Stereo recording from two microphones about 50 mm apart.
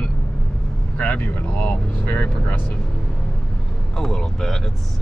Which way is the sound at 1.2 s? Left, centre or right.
Left.